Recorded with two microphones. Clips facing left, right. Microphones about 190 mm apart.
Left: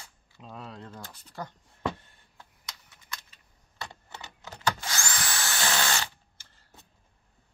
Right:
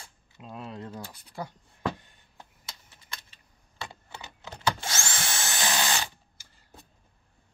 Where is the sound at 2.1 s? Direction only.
25° right (ahead or behind).